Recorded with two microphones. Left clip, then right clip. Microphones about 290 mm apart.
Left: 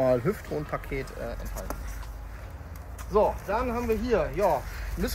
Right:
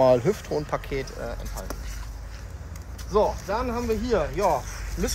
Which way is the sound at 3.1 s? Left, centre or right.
Centre.